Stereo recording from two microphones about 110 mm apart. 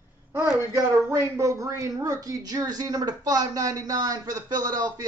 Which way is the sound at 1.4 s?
30° right (ahead or behind).